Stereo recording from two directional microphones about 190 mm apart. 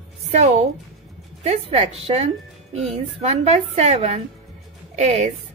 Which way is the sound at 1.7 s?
35° right (ahead or behind).